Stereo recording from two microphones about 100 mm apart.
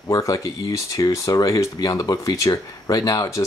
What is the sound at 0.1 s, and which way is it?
Speech, 35° left (ahead or behind).